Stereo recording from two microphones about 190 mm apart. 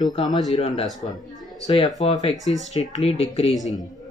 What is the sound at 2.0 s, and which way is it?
Speech, 30° left (ahead or behind).